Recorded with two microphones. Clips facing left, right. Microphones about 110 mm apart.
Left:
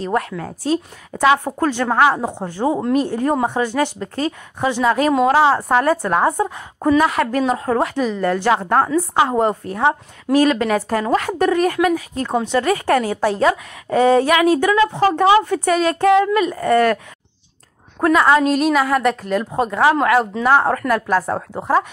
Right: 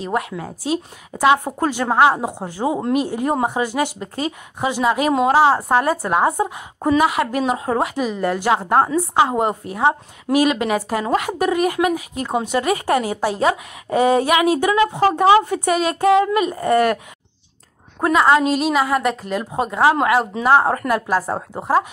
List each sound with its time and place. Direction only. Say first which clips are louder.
0.0 s a woman's voice: left 2 dB; 10° right (ahead or behind)
9.2 s a woman's voice: left 1 dB; 10° right (ahead or behind)
18.0 s a woman's voice: left 1 dB; 10° right (ahead or behind)
21.5 s a woman's voice: even; 5° right (ahead or behind)